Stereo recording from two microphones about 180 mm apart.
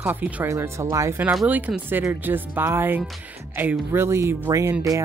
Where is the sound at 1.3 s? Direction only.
5° right (ahead or behind).